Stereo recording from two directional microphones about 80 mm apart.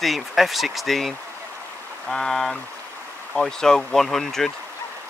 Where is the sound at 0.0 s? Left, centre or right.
Centre.